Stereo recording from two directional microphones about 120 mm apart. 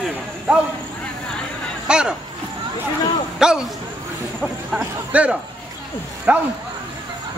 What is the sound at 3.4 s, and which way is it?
Speech, 5° right (ahead or behind).